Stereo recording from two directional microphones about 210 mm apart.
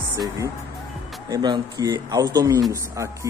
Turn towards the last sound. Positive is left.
turn(degrees=-15)  # may be behind; listen again after turning